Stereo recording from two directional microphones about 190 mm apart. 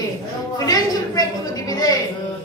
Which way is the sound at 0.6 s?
20° left (ahead or behind).